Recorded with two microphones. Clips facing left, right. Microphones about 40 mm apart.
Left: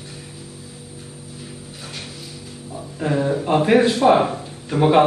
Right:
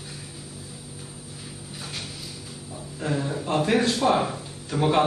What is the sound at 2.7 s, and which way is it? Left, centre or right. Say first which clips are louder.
A man's voice: left 6 dB; left.